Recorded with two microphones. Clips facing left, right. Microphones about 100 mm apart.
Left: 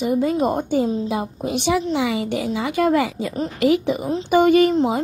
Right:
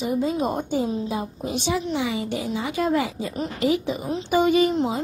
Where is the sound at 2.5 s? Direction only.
65° left (ahead or behind).